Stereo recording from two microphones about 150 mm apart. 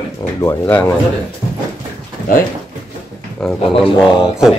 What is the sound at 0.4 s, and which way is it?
Speech, 15° left (ahead or behind).